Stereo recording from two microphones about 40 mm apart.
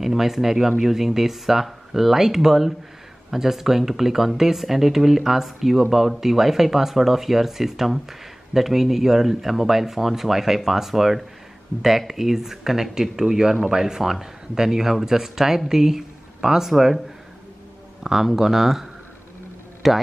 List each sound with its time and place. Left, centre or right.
0.0 s speech: centre
18.0 s speech: centre